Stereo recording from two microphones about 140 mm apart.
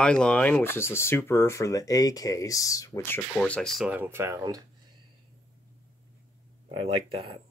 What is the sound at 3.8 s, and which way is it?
Speech, 10° right (ahead or behind).